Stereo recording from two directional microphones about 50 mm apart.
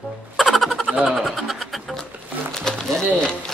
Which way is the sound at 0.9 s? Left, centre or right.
Centre.